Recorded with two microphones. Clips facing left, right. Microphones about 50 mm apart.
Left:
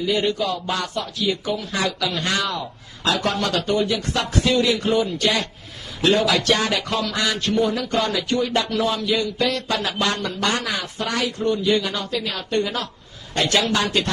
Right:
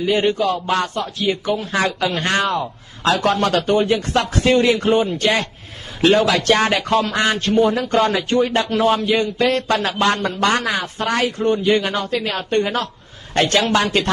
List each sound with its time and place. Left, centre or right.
0.0 s a man's voice: right
10.5 s speech: right
10.8 s a man's voice: right